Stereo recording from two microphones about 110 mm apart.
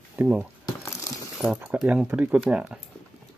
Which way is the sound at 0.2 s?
10° right (ahead or behind).